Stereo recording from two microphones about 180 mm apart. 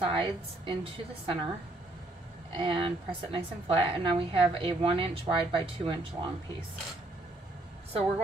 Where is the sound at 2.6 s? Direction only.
30° right (ahead or behind).